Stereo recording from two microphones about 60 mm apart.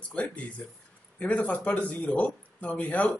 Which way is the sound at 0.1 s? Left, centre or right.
Left.